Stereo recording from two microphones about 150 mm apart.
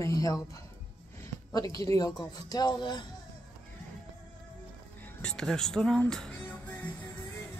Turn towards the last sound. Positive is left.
turn(degrees=10)  # may be behind; listen again after turning